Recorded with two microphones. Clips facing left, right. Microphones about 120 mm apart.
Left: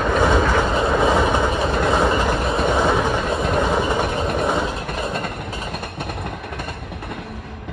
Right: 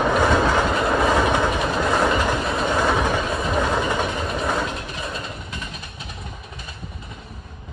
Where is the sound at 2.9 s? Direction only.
15° left (ahead or behind).